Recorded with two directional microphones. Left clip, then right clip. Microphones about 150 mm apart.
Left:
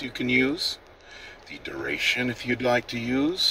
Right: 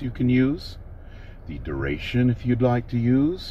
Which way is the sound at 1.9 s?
5° left (ahead or behind).